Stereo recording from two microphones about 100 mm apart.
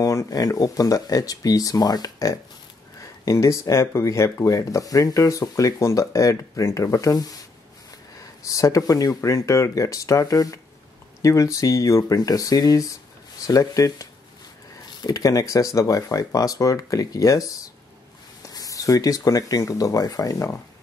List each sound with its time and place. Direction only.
0.0 s speech: 35° left (ahead or behind)